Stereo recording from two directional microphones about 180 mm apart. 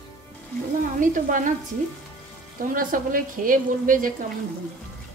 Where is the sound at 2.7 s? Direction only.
50° right (ahead or behind).